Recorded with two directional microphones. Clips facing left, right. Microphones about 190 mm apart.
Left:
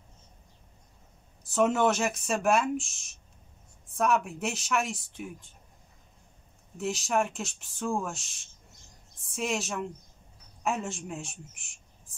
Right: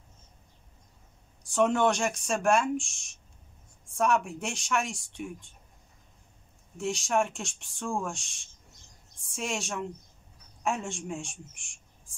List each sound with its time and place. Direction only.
1.4 s speech: 5° left (ahead or behind)
6.8 s a woman's voice: centre (ahead or behind)